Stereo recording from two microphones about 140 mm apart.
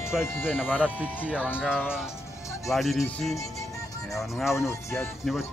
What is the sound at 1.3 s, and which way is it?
Speech, 10° left (ahead or behind).